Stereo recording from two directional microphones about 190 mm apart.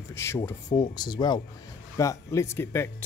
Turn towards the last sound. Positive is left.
turn(degrees=10)  # may be behind; listen again after turning